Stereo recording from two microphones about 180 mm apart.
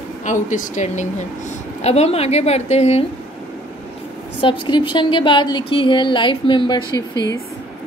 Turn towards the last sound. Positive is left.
turn(degrees=25)  # may be behind; listen again after turning